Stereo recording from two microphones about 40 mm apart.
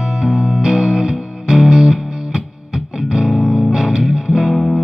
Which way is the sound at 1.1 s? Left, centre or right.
Centre.